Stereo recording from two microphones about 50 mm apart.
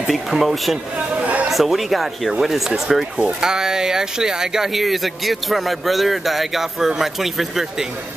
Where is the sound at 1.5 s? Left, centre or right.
Centre.